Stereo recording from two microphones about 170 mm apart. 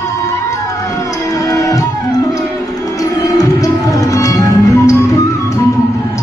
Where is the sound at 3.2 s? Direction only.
20° left (ahead or behind).